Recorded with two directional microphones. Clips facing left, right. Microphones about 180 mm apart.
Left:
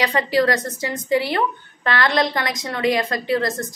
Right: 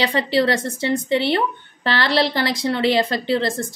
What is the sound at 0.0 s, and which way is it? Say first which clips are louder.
A woman's voice: even; 30° right (ahead or behind).